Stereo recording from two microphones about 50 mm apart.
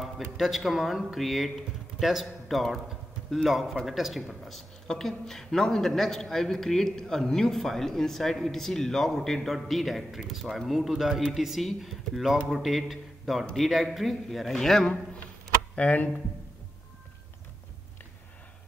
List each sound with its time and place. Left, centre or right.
0.4 s a man's voice: centre
15.7 s speech: left